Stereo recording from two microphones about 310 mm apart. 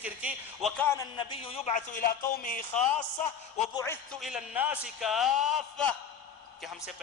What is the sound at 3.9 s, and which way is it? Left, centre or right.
A man's voice, centre.